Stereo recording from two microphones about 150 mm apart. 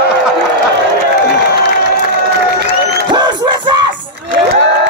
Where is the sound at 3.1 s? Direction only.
30° right (ahead or behind).